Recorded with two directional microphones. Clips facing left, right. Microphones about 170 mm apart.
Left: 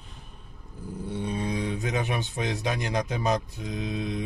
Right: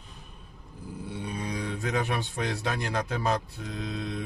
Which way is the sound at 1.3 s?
25° left (ahead or behind).